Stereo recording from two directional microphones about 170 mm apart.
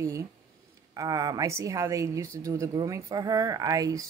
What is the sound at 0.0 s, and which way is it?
A woman's voice, 20° right (ahead or behind).